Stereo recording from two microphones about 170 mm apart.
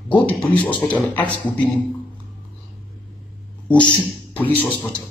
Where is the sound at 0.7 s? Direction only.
10° left (ahead or behind).